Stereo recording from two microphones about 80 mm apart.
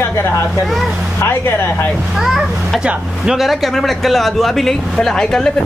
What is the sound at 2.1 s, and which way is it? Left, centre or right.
Speech, centre.